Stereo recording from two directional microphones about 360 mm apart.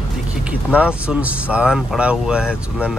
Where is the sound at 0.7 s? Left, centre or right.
Centre.